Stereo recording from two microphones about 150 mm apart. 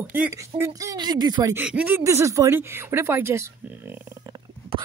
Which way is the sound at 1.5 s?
10° right (ahead or behind).